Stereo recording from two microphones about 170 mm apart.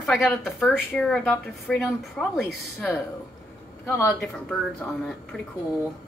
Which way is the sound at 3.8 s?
15° left (ahead or behind).